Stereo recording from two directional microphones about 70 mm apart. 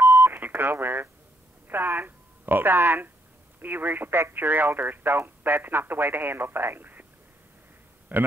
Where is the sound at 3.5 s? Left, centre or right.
Right.